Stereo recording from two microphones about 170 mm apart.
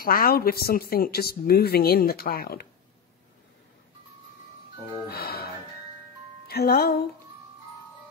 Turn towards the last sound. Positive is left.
turn(degrees=65)  # may be behind; listen again after turning